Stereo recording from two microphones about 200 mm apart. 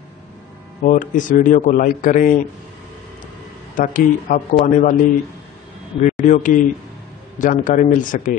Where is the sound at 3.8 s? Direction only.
45° left (ahead or behind).